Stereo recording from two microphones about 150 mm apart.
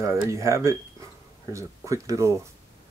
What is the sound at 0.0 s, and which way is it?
Speech, 20° right (ahead or behind).